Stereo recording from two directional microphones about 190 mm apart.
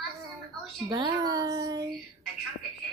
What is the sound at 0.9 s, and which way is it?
Speech, 20° right (ahead or behind).